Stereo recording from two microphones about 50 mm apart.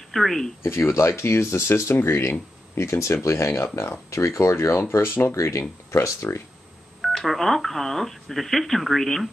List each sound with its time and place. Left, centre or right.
0.1 s speech: centre
0.7 s speech: left
4.9 s speech: left
5.3 s speech: left
7.0 s speech: centre